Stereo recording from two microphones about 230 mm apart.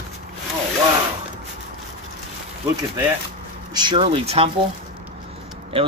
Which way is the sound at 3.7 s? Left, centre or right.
Centre.